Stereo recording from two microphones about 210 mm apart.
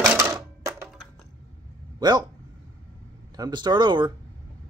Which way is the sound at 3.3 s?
20° right (ahead or behind).